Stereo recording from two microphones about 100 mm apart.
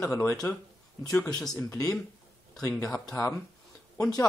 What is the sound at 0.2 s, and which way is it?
Speech, 30° left (ahead or behind).